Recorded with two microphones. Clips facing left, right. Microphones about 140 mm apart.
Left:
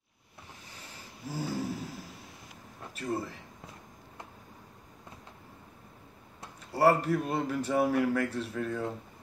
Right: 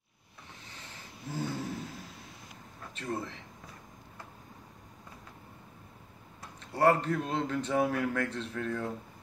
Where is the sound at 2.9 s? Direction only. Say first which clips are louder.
Left 2 dB; 5° left (ahead or behind).